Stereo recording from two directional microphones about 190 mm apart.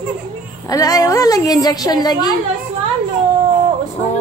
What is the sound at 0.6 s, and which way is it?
A woman's voice, 20° left (ahead or behind).